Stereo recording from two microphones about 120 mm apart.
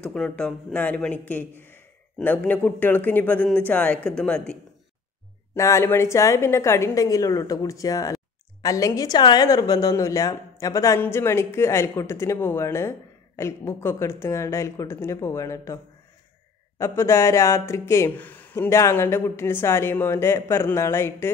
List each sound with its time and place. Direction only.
0.0 s speech: 5° left (ahead or behind)
5.6 s speech: 25° left (ahead or behind)